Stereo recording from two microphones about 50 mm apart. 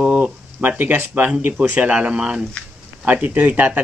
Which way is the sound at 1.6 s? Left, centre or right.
Right.